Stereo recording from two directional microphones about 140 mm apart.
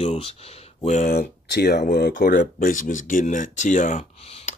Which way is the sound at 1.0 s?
90° left.